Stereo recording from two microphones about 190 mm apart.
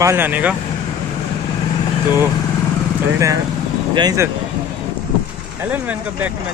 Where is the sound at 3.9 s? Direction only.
20° right (ahead or behind).